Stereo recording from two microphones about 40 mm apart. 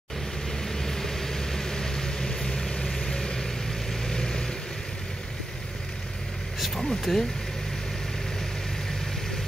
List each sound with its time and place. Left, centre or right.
0.5 s vehicle: centre
6.6 s speech: centre